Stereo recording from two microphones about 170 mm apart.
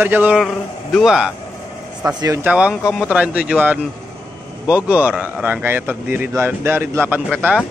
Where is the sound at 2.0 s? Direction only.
20° right (ahead or behind).